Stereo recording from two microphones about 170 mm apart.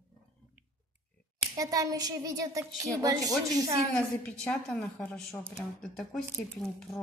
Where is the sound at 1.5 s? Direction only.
20° right (ahead or behind).